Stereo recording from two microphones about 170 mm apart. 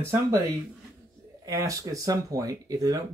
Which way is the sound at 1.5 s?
20° right (ahead or behind).